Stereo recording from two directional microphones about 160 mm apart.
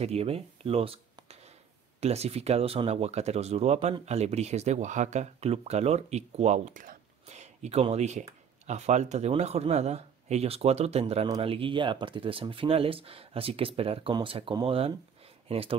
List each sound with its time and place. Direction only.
0.0 s speech: 40° right (ahead or behind)